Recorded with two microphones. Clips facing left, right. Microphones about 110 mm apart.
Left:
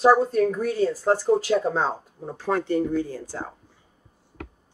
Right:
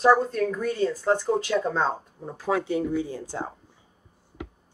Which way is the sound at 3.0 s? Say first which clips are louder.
Even; 20° right (ahead or behind).